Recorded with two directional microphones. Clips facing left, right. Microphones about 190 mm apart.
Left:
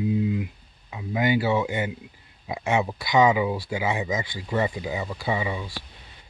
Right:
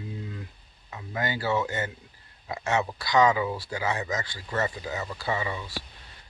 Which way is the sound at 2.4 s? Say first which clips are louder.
Left 3 dB; 15° left (ahead or behind).